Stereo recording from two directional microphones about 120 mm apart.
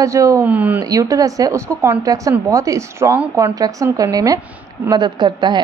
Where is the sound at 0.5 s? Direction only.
15° right (ahead or behind).